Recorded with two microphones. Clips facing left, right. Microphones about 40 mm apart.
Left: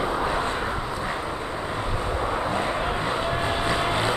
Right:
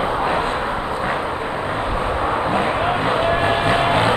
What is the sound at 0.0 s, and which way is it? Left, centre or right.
Vehicle, right.